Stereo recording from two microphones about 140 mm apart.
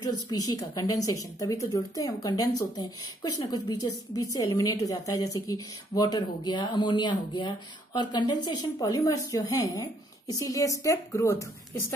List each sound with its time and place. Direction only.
0.0 s a woman's voice: 25° left (ahead or behind)